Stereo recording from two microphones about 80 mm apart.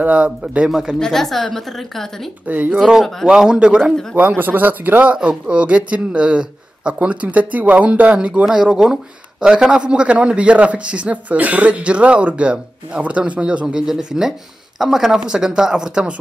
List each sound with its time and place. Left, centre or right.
0.0 s a man's voice: centre
0.9 s a woman's voice: centre
2.4 s speech: centre
2.7 s a man's voice: centre
4.4 s a man's voice: right